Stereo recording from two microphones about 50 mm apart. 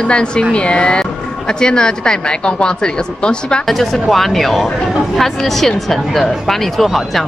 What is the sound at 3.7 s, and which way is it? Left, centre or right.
Speech, centre.